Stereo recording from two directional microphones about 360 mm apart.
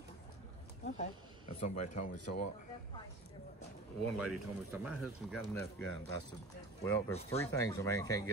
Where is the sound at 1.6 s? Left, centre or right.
Centre.